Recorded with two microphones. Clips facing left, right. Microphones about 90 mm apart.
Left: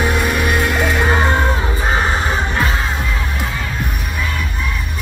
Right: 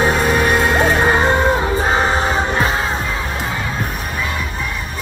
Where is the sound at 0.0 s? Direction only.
30° right (ahead or behind).